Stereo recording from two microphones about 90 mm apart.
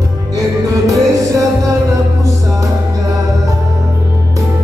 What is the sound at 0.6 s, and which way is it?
Music, 40° right (ahead or behind).